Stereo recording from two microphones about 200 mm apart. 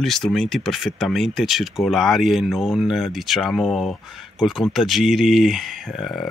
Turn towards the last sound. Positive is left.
turn(degrees=0)  # may be behind; listen again after turning